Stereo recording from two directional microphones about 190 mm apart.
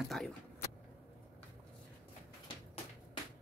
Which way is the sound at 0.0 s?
Centre (ahead or behind).